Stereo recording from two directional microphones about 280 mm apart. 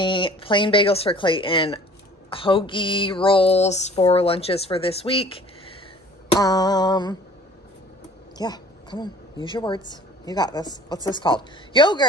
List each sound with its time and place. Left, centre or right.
0.0 s a sound: centre
6.3 s speech: centre
8.4 s a woman's voice: centre